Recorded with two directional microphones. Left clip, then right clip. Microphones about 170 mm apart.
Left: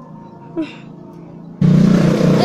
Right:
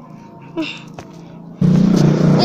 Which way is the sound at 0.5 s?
20° left (ahead or behind).